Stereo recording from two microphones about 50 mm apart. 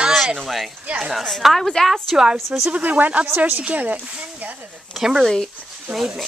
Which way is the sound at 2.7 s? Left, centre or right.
Right.